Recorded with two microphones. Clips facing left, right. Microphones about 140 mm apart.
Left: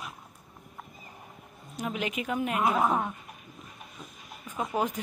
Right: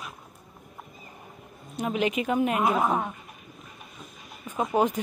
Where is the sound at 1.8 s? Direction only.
20° right (ahead or behind).